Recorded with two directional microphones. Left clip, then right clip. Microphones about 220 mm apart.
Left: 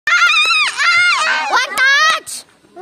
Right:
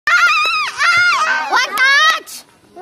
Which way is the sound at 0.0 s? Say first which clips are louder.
Even; 40° left (ahead or behind).